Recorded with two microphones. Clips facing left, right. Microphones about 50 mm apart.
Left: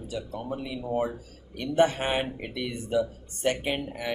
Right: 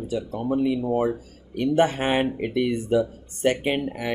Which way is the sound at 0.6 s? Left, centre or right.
Right.